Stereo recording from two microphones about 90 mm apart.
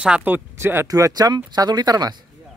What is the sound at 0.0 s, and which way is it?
Speech, 10° right (ahead or behind).